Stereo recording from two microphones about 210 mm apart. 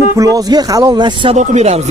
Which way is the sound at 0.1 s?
15° right (ahead or behind).